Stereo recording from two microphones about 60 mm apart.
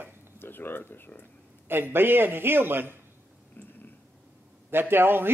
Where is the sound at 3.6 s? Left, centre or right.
Left.